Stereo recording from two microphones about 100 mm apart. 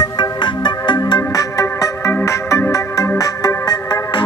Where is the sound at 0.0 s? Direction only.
45° left (ahead or behind).